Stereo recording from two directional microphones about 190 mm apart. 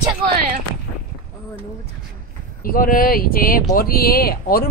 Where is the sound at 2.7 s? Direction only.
50° left (ahead or behind).